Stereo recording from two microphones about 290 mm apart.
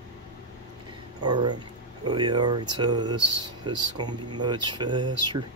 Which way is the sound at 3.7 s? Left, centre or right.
Centre.